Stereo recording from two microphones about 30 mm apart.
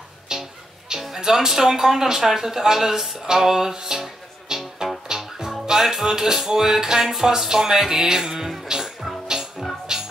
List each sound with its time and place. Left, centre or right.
0.3 s music: centre
1.1 s speech: centre
3.3 s music: centre
5.8 s speech: centre
9.6 s music: centre